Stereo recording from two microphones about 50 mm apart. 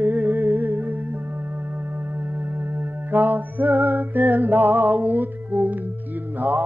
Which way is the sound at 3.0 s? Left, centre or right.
Right.